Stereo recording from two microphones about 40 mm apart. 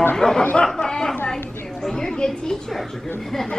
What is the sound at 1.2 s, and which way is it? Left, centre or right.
A woman's voice, centre.